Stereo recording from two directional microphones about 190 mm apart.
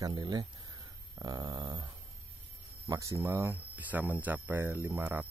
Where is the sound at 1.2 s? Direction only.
20° right (ahead or behind).